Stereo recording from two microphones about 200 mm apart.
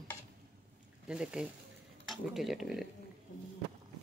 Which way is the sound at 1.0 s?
5° right (ahead or behind).